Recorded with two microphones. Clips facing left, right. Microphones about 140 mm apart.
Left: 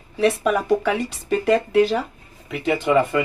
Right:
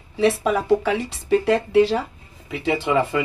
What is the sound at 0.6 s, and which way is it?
Speech, 25° right (ahead or behind).